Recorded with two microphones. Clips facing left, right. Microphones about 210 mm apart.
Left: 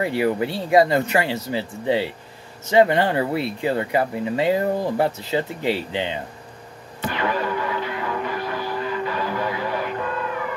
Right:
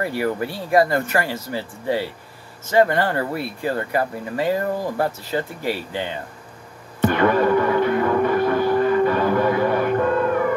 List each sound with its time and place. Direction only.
0.0 s speech: 20° left (ahead or behind)
7.0 s music: 55° right (ahead or behind)